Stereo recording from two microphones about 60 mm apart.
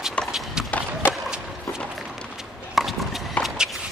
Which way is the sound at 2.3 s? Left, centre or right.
Centre.